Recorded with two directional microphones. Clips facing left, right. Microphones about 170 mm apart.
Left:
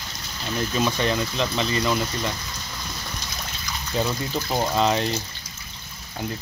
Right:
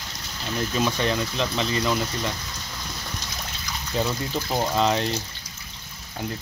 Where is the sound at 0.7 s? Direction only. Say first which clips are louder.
Left 1 dB; centre (ahead or behind).